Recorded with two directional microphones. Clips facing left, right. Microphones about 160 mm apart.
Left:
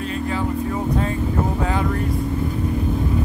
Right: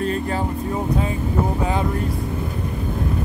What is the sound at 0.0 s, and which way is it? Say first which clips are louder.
Music: right 1 dB; 40° right (ahead or behind).